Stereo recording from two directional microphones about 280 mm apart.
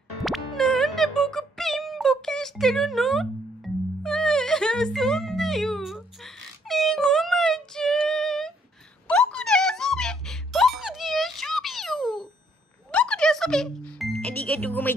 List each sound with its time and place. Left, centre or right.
0.2 s music: centre